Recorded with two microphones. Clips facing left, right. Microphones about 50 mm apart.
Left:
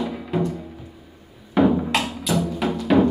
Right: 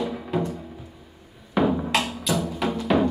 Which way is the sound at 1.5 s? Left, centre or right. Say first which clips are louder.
Left 3 dB; centre.